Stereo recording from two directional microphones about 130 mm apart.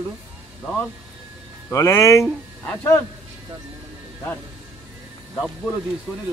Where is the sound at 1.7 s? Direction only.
20° left (ahead or behind).